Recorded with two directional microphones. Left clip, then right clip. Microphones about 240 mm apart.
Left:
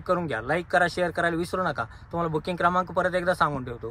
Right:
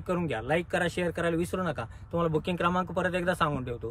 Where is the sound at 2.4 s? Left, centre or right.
Centre.